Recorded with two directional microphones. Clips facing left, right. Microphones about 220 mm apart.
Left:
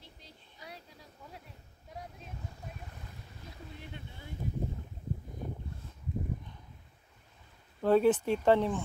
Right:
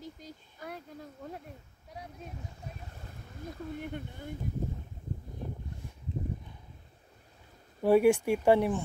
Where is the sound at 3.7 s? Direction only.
50° right (ahead or behind).